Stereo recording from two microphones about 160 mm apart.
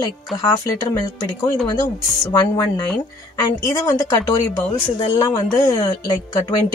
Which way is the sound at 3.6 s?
20° left (ahead or behind).